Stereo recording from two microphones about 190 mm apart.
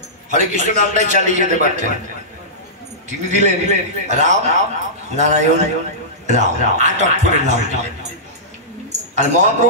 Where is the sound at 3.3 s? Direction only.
35° right (ahead or behind).